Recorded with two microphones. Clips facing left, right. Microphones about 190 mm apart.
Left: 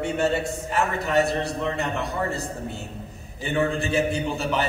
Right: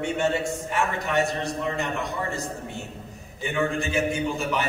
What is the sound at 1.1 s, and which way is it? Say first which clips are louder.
Speech: left 5 dB; 35° left (ahead or behind).